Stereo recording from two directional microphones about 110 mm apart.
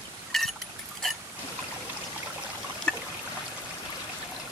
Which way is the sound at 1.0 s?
5° left (ahead or behind).